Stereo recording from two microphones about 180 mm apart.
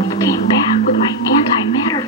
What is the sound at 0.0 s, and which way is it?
Music, 20° left (ahead or behind).